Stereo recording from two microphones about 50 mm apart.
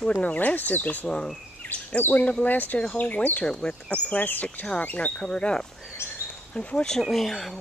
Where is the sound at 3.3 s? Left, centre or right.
Centre.